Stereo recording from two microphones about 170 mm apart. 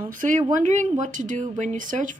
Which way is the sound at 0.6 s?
45° right (ahead or behind).